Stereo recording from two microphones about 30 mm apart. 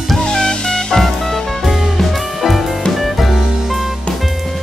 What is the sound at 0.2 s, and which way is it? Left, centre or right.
Music, left.